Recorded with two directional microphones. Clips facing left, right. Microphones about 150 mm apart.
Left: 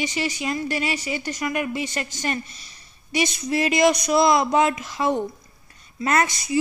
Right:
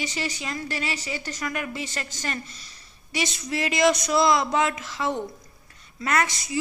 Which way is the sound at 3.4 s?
25° left (ahead or behind).